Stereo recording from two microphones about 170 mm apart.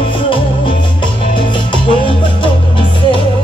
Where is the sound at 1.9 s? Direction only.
30° left (ahead or behind).